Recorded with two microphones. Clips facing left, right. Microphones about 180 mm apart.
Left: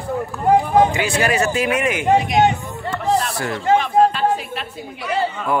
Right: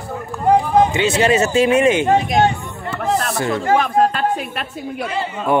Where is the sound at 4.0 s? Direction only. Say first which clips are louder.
Left 1 dB; 50° right (ahead or behind).